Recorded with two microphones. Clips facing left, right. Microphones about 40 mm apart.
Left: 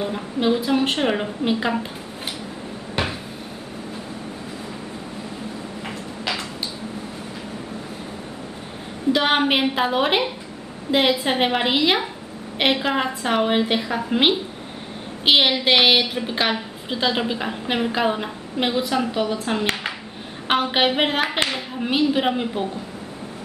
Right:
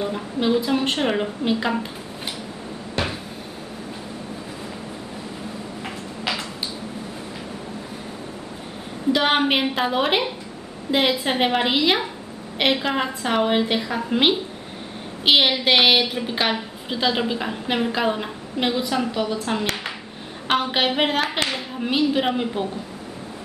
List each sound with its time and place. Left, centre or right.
0.0 s a woman's voice: centre
3.0 s cupboard open or close: centre
5.9 s a sound: centre
9.1 s a woman's voice: centre